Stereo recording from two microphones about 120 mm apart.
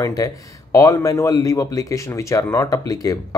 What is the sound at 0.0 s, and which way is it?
Speech, 25° left (ahead or behind).